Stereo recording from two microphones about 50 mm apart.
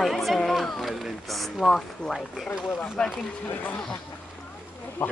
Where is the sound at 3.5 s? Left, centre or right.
Left.